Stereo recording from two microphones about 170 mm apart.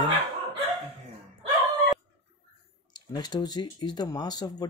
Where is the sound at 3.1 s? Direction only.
25° left (ahead or behind).